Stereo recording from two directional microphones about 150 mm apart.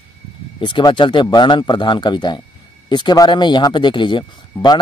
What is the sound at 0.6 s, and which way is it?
Speech, 30° left (ahead or behind).